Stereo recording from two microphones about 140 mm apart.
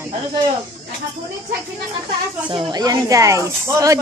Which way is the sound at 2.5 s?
35° right (ahead or behind).